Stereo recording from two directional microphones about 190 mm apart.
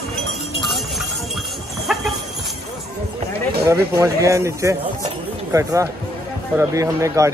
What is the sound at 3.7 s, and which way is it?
Speech, 15° right (ahead or behind).